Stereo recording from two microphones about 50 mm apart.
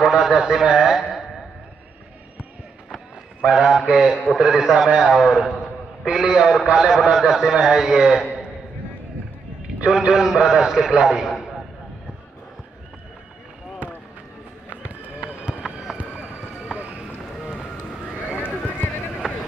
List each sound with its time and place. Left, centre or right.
0.0 s a man's voice: centre
3.3 s a man's voice: centre
9.8 s a man's voice: centre
14.7 s run: right
15.1 s run: centre
16.7 s run: right
19.2 s boat: centre